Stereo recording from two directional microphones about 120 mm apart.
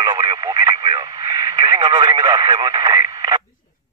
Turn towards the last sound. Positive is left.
turn(degrees=-35)  # may be behind; listen again after turning